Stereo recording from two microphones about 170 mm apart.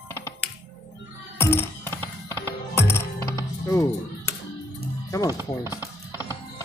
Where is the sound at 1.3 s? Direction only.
15° left (ahead or behind).